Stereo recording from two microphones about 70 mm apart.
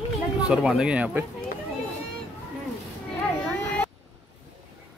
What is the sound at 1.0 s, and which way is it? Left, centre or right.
Speech, centre.